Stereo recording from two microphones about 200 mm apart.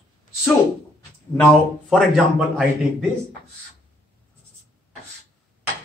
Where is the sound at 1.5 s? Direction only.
Centre (ahead or behind).